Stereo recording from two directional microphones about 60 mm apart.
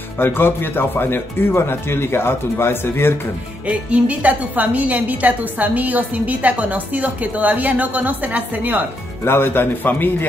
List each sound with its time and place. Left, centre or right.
0.2 s speech: left
3.6 s a woman's voice: right
9.2 s speech: left